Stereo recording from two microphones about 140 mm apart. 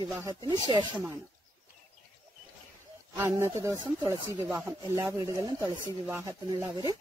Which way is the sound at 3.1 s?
20° right (ahead or behind).